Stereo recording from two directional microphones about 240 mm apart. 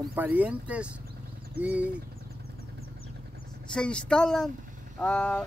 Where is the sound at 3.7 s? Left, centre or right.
Centre.